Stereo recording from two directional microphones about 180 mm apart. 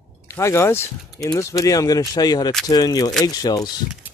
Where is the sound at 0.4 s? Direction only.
15° left (ahead or behind).